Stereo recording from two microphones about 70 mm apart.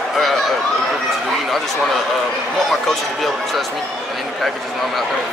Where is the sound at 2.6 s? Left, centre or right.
Centre.